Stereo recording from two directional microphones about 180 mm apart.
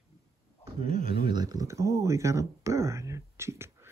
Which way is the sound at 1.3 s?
20° right (ahead or behind).